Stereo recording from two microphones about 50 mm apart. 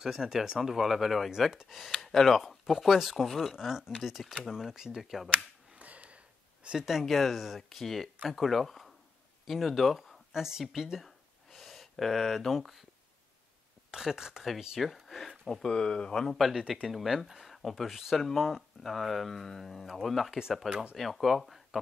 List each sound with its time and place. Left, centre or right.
0.0 s speech: centre
5.8 s a sound: right
6.9 s speech: centre
13.8 s speech: centre
14.8 s speech: centre
16.3 s speech: centre